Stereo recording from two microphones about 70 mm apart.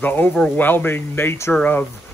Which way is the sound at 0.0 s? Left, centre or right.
Left.